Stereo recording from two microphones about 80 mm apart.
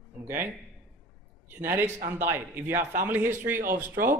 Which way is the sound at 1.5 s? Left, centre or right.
Right.